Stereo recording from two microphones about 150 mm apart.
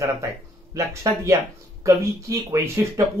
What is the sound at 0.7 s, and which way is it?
Speech, 20° right (ahead or behind).